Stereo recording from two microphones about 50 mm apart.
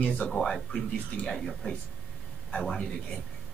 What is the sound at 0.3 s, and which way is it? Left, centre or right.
Speech, centre.